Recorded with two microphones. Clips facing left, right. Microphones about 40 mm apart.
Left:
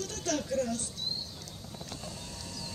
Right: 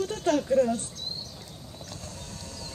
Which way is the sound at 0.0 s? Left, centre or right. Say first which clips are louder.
Right 8 dB; right.